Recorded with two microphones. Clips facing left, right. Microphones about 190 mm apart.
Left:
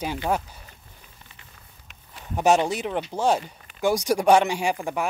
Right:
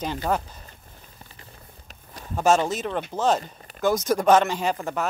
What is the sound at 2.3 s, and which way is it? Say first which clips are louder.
Speech: even; 15° left (ahead or behind).